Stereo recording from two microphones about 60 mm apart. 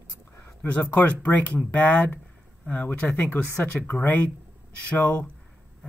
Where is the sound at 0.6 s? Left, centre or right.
Left.